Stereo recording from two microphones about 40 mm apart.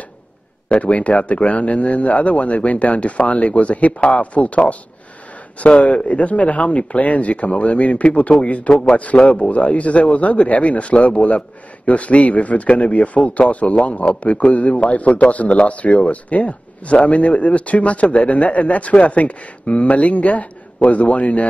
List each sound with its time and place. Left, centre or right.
0.7 s a man's voice: left